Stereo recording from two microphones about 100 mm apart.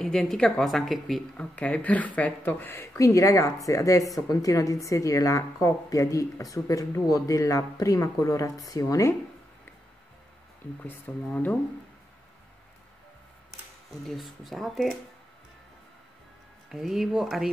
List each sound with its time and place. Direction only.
0.0 s speech: 5° left (ahead or behind)
1.3 s a woman's voice: 10° left (ahead or behind); by 9.1 s 35° left (ahead or behind)
10.8 s speech: 15° left (ahead or behind)
14.0 s speech: centre (ahead or behind)
16.6 s speech: 5° right (ahead or behind)